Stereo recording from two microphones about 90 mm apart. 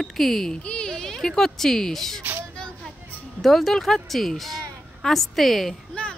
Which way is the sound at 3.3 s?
Centre (ahead or behind).